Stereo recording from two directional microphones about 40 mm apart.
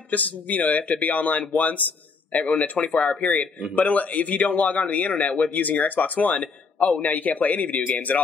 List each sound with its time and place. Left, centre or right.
0.1 s a man's voice: left
2.3 s a man's voice: left